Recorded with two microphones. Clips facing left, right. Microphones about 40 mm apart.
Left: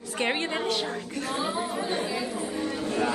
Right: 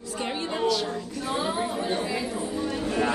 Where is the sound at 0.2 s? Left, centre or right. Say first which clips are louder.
Left 3 dB; left.